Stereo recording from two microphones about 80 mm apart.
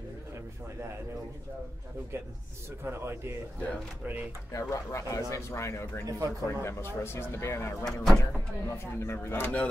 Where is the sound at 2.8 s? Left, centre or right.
Right.